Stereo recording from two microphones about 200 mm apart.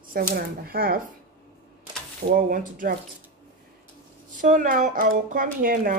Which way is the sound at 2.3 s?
40° right (ahead or behind).